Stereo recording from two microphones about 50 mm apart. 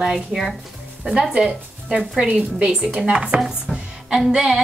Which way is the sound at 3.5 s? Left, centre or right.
Centre.